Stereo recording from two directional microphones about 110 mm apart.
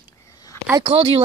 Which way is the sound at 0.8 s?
55° right (ahead or behind).